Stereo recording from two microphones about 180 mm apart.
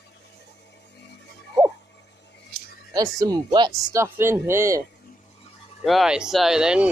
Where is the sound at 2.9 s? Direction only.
20° right (ahead or behind).